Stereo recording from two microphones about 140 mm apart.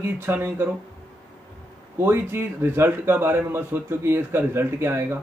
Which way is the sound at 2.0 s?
15° right (ahead or behind).